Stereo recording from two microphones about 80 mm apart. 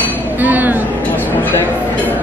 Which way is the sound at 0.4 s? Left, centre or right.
Right.